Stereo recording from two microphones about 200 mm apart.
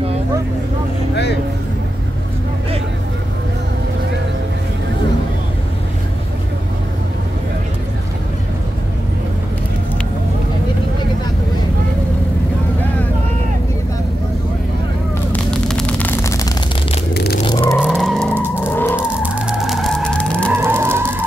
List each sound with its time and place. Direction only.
15.3 s a sound: 5° left (ahead or behind)
17.1 s a sound: 50° left (ahead or behind)
17.6 s skidding: 10° left (ahead or behind)
18.3 s vehicle: 10° right (ahead or behind)
18.6 s vehicle: 10° left (ahead or behind)
19.2 s vehicle: 5° right (ahead or behind)
20.5 s vehicle: 10° right (ahead or behind)